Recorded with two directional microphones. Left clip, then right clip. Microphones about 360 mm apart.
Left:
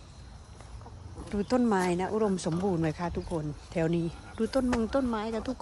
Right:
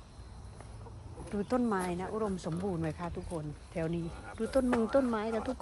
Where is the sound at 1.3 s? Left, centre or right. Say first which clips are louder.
Left 5 dB; centre.